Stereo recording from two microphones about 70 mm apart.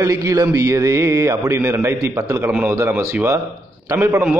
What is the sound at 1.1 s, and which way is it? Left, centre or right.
Speech, right.